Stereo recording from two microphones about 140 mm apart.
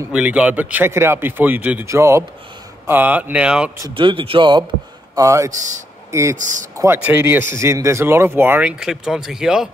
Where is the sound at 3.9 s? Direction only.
40° right (ahead or behind).